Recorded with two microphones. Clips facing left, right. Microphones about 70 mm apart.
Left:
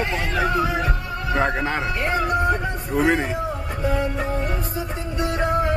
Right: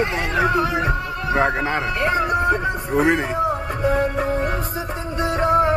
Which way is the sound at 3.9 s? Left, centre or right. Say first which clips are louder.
Right 4 dB; right.